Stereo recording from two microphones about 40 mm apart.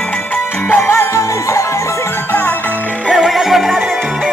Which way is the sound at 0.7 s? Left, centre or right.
Left.